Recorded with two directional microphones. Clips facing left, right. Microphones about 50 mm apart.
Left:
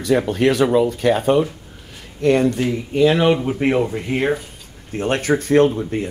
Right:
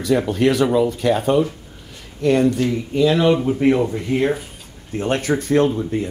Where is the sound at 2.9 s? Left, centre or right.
Left.